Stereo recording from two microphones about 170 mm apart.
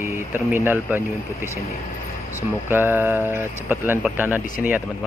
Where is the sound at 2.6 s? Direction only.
10° right (ahead or behind).